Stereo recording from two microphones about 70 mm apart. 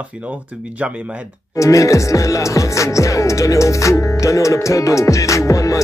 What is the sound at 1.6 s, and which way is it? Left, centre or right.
Speech, left.